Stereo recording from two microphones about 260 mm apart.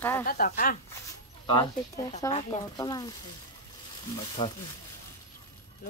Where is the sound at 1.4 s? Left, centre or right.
Centre.